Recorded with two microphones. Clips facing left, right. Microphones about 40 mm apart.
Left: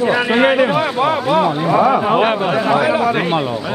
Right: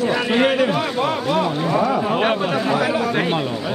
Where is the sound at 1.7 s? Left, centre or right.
Left.